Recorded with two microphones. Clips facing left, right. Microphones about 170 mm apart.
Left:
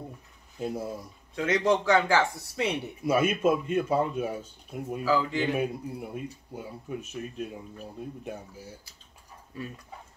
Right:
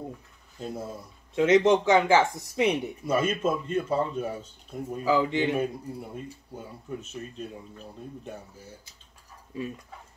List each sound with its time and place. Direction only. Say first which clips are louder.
0.6 s speech: left 3 dB; 10° left (ahead or behind)
1.3 s speech: right 5 dB; 25° right (ahead or behind)
3.0 s speech: left 1 dB; 10° left (ahead or behind)
5.0 s speech: right 2 dB; 20° right (ahead or behind)
5.6 s speech: even; 10° left (ahead or behind)